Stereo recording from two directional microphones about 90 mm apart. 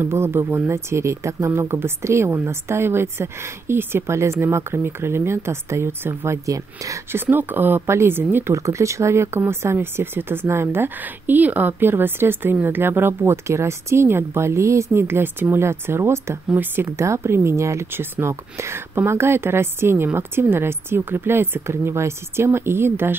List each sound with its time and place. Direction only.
0.0 s a woman's voice: 30° right (ahead or behind)
7.1 s speech: 25° right (ahead or behind)
8.5 s speech: 35° right (ahead or behind)